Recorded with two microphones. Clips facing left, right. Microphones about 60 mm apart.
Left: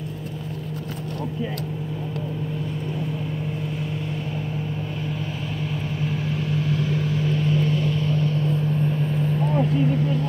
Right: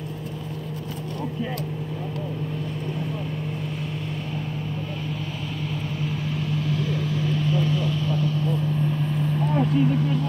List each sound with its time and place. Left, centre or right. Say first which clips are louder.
6.0 s vehicle: left 2 dB; left
9.1 s vehicle: left 1 dB; centre